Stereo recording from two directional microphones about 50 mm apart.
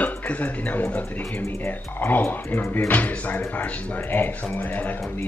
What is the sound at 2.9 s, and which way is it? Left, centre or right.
Speech, left.